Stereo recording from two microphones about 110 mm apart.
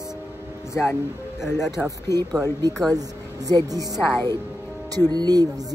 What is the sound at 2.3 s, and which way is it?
A woman's voice, 35° right (ahead or behind).